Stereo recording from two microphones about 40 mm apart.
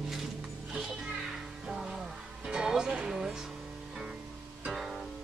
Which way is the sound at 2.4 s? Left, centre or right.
Centre.